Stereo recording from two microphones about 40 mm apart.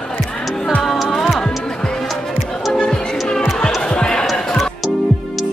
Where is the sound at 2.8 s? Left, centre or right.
Left.